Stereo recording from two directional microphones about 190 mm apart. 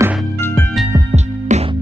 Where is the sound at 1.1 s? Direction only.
35° right (ahead or behind).